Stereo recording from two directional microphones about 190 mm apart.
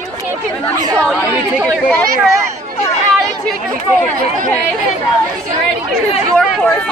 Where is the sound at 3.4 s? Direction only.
10° left (ahead or behind).